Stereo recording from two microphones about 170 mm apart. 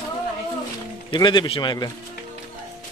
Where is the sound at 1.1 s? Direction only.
25° left (ahead or behind).